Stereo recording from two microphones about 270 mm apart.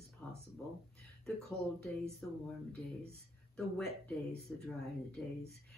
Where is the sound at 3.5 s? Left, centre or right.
Centre.